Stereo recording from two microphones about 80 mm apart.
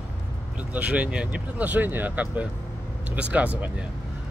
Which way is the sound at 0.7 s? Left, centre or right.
Centre.